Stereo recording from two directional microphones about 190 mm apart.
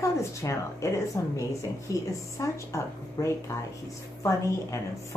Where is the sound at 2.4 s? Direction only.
15° left (ahead or behind).